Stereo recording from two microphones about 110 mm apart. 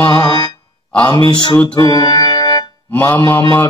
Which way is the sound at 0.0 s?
40° left (ahead or behind).